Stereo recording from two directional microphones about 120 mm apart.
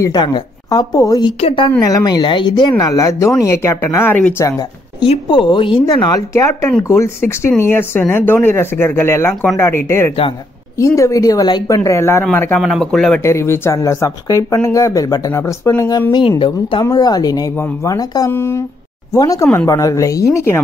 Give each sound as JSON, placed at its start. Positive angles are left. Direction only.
{"t": 0.0, "sound": "a woman's voice", "side_deg": 40}
{"t": 1.4, "sound": "speech", "side_deg": 45}
{"t": 1.8, "sound": "a woman's voice", "side_deg": 30}
{"t": 2.8, "sound": "speech", "side_deg": 30}
{"t": 5.0, "sound": "speech", "side_deg": 45}
{"t": 5.9, "sound": "speech", "side_deg": 30}
{"t": 12.5, "sound": "speech", "side_deg": 0}
{"t": 13.2, "sound": "speech", "side_deg": 25}
{"t": 16.1, "sound": "a woman's voice", "side_deg": 40}
{"t": 16.8, "sound": "a woman's voice", "side_deg": 30}
{"t": 18.3, "sound": "speech", "side_deg": 20}
{"t": 19.1, "sound": "a woman's voice", "side_deg": 30}